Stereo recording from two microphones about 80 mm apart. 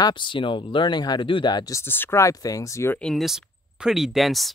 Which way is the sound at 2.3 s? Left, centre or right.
Left.